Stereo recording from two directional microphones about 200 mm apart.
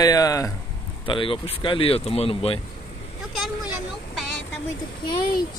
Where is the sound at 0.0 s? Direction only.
20° left (ahead or behind).